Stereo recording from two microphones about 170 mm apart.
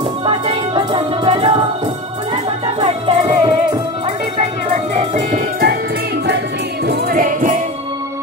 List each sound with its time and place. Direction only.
0.2 s music: 30° right (ahead or behind)
6.9 s music: 55° right (ahead or behind)